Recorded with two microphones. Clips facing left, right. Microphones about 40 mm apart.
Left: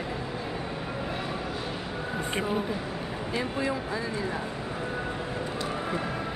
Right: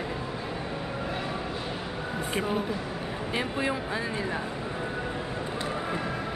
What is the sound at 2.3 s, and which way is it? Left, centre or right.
Speech, centre.